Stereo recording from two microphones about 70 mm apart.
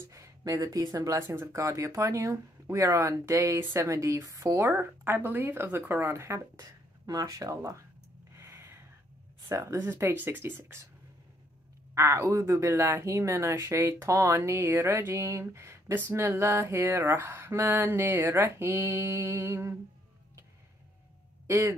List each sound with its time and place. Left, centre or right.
0.1 s speech: right
1.2 s speech: right
1.5 s speech: right
4.6 s speech: right
7.1 s speech: right
8.4 s a sound: right
9.5 s speech: right
9.8 s speech: right
11.9 s speech: right
21.5 s speech: right